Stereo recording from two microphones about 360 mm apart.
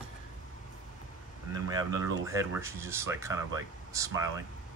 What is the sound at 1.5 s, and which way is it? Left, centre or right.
Speech, centre.